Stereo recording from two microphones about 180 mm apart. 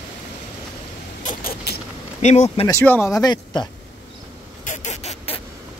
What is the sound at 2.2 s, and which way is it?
Speech, 40° left (ahead or behind).